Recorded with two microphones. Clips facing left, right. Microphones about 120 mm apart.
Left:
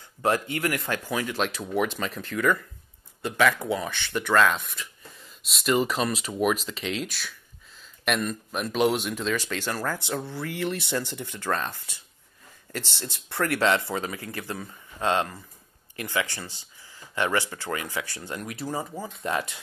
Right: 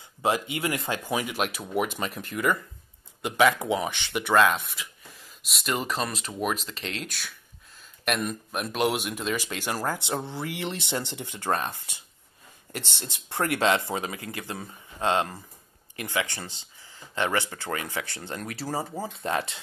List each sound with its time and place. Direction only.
0.2 s speech: 20° right (ahead or behind)